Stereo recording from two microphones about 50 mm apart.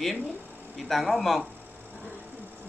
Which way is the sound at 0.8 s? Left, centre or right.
Centre.